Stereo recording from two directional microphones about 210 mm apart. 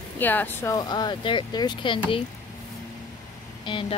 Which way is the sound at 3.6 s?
25° left (ahead or behind).